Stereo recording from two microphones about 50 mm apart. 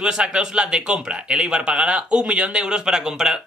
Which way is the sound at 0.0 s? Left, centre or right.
Centre.